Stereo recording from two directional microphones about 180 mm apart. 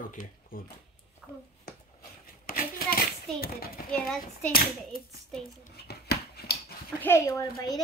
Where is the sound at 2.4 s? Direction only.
55° left (ahead or behind).